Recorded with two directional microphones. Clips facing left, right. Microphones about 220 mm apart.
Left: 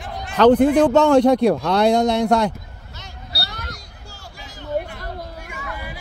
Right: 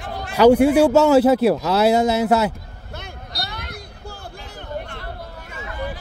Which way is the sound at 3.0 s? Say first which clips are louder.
Right 1 dB; 55° right (ahead or behind).